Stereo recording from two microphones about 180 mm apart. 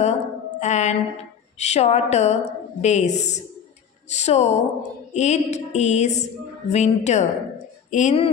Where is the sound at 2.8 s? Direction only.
40° left (ahead or behind).